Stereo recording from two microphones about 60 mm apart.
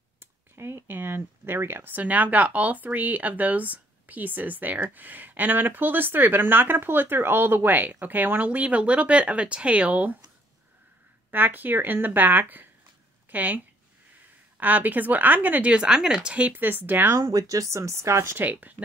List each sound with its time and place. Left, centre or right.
0.2 s speech: right
11.2 s speech: right
14.6 s speech: right
15.7 s speech: centre; by 17.1 s right
17.2 s speech: right
18.4 s speech: right